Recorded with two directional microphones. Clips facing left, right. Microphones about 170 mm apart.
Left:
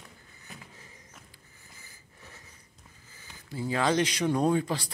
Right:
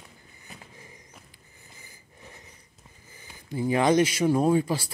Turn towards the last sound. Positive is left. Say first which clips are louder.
# right 3 dB
turn(degrees=-5)  # may be behind; listen again after turning